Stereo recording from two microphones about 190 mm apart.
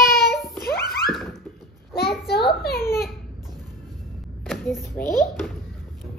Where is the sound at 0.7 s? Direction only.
55° left (ahead or behind).